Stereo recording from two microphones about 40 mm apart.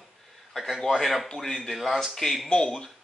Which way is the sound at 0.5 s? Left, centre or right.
Centre.